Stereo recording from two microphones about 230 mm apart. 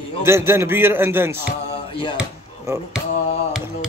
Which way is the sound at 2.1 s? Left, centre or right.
Centre.